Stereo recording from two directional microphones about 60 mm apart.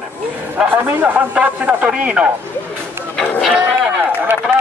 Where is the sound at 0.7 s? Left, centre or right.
Right.